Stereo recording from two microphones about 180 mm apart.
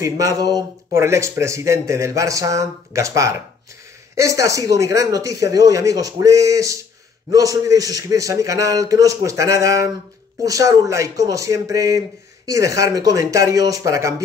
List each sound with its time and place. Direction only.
0.0 s a man's voice: 20° right (ahead or behind)